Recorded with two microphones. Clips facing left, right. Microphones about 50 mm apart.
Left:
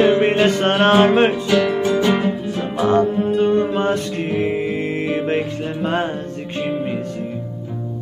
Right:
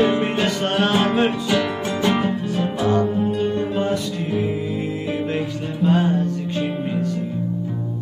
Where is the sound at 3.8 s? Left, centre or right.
Left.